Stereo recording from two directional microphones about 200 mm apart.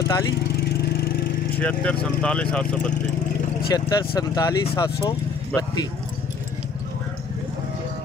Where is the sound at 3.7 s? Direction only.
20° left (ahead or behind).